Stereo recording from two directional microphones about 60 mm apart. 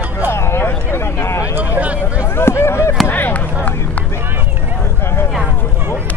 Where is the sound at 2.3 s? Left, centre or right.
Left.